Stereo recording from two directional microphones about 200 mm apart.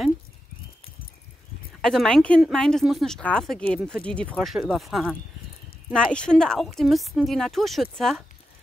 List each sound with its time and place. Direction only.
1.8 s speech: 5° left (ahead or behind)